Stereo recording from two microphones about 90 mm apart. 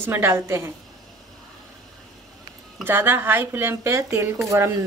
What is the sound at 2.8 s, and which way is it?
Speech, 25° right (ahead or behind).